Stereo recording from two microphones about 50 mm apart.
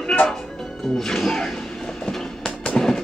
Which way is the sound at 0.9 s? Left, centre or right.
Centre.